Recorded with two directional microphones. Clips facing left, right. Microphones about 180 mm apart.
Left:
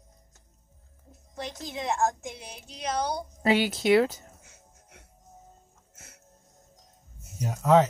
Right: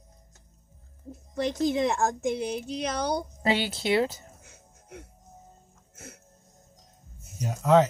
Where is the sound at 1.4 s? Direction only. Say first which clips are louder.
Right 9 dB; 60° right (ahead or behind).